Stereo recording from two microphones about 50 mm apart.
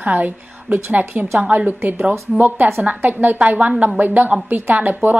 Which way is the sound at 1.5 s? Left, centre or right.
Right.